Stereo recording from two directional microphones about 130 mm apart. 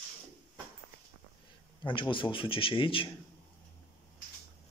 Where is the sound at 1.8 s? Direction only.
40° left (ahead or behind).